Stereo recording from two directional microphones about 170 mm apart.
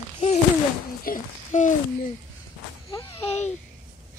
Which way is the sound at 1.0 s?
50° left (ahead or behind).